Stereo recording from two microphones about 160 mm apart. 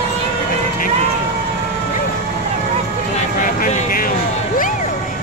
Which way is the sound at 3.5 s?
60° left (ahead or behind).